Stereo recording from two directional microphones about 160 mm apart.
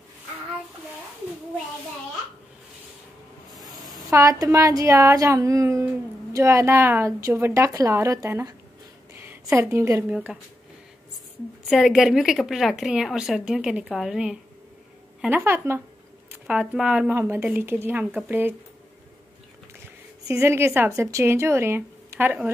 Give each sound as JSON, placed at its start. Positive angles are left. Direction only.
{"t": 3.5, "sound": "a sound", "side_deg": 0}
{"t": 4.1, "sound": "a woman's voice", "side_deg": -20}
{"t": 10.1, "sound": "a woman's voice", "side_deg": -5}
{"t": 11.7, "sound": "a woman's voice", "side_deg": 0}
{"t": 20.2, "sound": "a woman's voice", "side_deg": -15}